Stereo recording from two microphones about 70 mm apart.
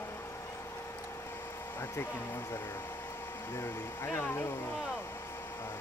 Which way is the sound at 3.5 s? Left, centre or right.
Left.